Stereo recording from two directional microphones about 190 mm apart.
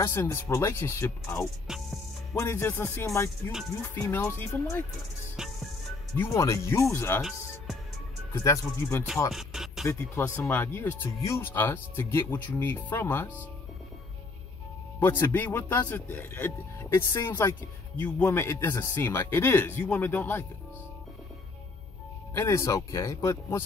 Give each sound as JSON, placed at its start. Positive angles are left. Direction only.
{"t": 0.0, "sound": "speech", "side_deg": 10}
{"t": 5.4, "sound": "music", "side_deg": 0}
{"t": 6.1, "sound": "speech", "side_deg": 15}
{"t": 8.3, "sound": "speech", "side_deg": 15}
{"t": 9.3, "sound": "music", "side_deg": 0}
{"t": 9.8, "sound": "speech", "side_deg": 15}
{"t": 15.0, "sound": "speech", "side_deg": 10}
{"t": 22.3, "sound": "speech", "side_deg": 15}